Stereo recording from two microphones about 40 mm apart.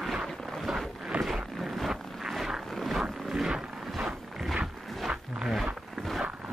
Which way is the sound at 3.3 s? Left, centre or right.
Centre.